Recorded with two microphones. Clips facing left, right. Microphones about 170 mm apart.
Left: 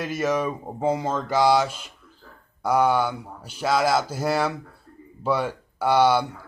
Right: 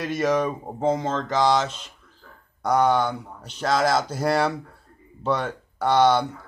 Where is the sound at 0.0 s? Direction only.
5° left (ahead or behind).